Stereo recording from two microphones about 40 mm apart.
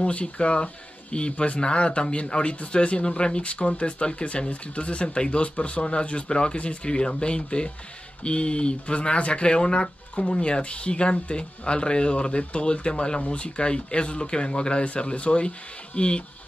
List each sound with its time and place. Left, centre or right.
0.0 s speech: left